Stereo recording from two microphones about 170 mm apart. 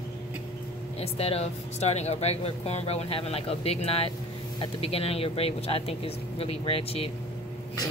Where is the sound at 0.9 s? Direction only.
35° left (ahead or behind).